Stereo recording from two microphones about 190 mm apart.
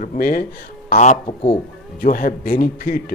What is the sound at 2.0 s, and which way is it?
Speech, 45° left (ahead or behind).